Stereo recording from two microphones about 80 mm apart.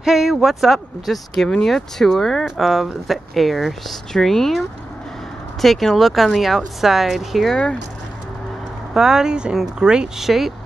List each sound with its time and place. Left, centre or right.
0.0 s speech: centre
8.9 s speech: centre